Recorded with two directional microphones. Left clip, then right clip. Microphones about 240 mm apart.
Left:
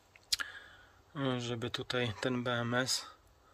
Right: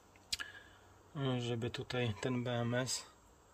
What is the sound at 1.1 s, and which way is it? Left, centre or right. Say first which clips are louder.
Speech: left 3 dB; centre.